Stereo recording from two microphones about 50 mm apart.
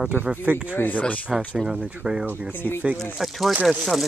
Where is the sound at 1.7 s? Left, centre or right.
Right.